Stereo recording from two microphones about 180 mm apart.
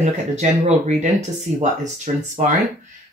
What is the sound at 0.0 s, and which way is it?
Speech, 40° right (ahead or behind).